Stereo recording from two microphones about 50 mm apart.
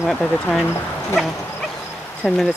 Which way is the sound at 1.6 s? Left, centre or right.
Centre.